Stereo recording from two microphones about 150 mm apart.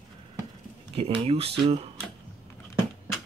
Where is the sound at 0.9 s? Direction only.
40° right (ahead or behind).